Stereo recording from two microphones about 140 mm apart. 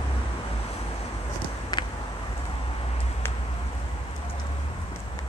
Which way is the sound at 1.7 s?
30° left (ahead or behind).